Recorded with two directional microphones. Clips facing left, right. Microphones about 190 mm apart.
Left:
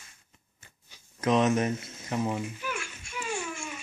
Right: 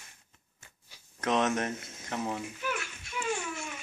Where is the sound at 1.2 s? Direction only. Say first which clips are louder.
Left 4 dB; centre (ahead or behind).